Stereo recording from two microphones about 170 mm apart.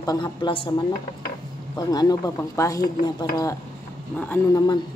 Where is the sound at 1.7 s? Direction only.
20° left (ahead or behind).